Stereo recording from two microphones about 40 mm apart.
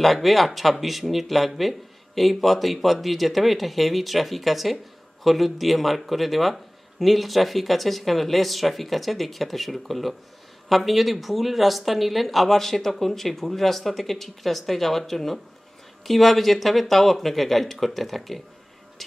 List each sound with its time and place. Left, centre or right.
0.0 s a man's voice: centre
19.0 s music: centre